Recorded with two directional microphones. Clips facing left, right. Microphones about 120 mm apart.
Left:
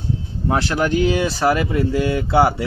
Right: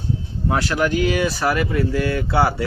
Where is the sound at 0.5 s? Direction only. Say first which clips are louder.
Left 1 dB; 30° left (ahead or behind).